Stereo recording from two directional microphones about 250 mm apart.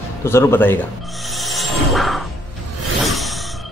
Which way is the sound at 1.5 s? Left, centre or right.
Centre.